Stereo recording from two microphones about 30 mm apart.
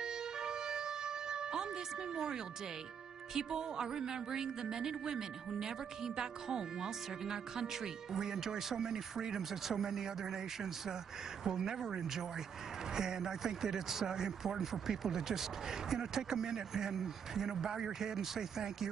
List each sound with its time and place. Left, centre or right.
0.0 s music: right
3.3 s a woman's voice: right